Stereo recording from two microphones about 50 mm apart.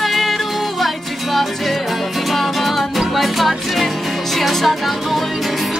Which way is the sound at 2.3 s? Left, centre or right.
Centre.